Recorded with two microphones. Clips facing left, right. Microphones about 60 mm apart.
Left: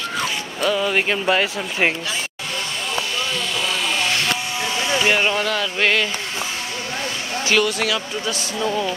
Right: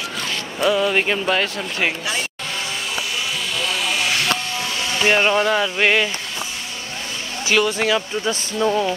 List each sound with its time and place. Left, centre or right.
0.6 s speech: centre
3.6 s vehicle: centre
5.0 s speech: centre
7.4 s speech: centre